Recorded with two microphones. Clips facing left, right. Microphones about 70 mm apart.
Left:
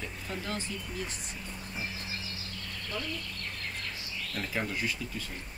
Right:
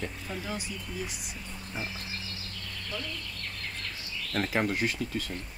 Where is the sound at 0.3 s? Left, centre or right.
Centre.